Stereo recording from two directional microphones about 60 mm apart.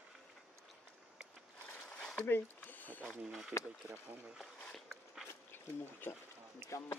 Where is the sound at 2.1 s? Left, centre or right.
Left.